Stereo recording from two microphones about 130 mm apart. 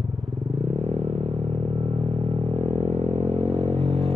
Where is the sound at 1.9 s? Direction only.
50° right (ahead or behind).